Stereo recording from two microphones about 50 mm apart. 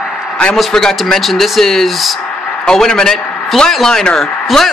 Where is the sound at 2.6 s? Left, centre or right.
Centre.